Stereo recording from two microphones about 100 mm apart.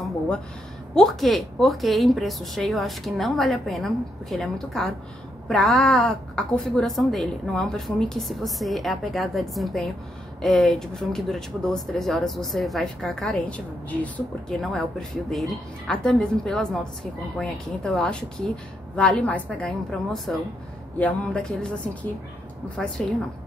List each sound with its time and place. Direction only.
0.9 s a woman's voice: centre (ahead or behind)